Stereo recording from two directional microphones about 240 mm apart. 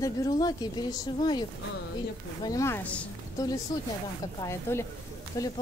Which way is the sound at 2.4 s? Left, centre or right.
Centre.